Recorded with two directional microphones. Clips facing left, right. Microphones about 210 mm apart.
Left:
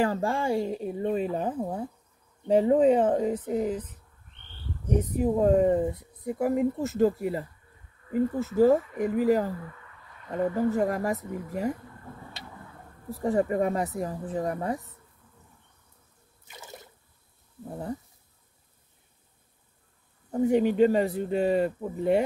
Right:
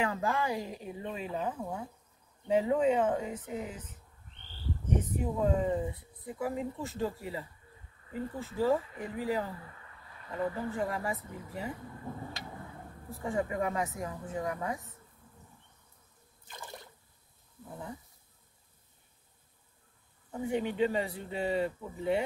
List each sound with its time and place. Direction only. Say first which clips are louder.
0.0 s speech: left 5 dB; 30° left (ahead or behind)
5.6 s speech: left 8 dB; 55° left (ahead or behind)
13.1 s speech: left 8 dB; 40° left (ahead or behind)
16.4 s water: left 1 dB; 10° left (ahead or behind)
20.2 s speech: left 10 dB; 40° left (ahead or behind)